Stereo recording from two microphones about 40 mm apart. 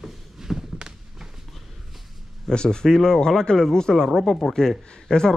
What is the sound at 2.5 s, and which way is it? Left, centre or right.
Speech, left.